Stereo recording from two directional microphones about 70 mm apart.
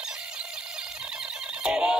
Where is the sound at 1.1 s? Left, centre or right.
Centre.